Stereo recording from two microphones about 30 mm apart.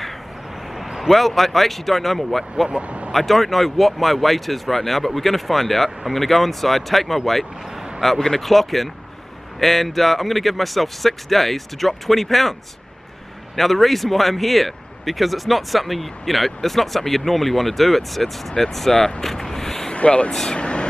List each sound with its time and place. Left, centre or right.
0.9 s speech: centre
2.7 s speech: right
3.1 s speech: centre
13.6 s speech: centre
19.2 s a sound: centre
20.0 s speech: left